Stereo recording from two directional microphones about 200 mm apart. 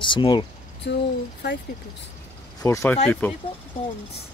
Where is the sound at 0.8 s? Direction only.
55° left (ahead or behind).